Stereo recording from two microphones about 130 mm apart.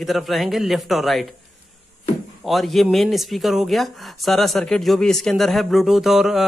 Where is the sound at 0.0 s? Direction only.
Centre (ahead or behind).